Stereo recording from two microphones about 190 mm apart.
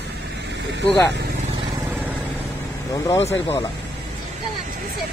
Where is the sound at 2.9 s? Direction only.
15° left (ahead or behind).